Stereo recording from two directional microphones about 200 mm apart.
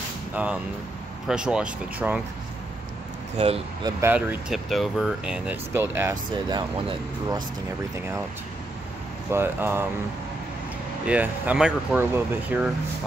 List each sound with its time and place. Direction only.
0.3 s speech: 5° right (ahead or behind)
3.3 s speech: 30° right (ahead or behind)
4.0 s speech: 10° right (ahead or behind)
9.3 s speech: 10° right (ahead or behind)
11.1 s speech: 5° right (ahead or behind)